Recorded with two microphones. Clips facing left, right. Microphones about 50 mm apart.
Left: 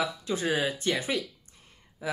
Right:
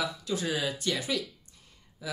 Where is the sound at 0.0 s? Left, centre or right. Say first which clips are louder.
Left 2 dB; left.